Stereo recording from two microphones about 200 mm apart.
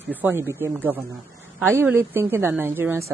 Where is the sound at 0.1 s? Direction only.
10° right (ahead or behind).